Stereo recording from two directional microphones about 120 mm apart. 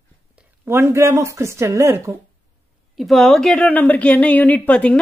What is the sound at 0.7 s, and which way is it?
A woman's voice, 20° right (ahead or behind).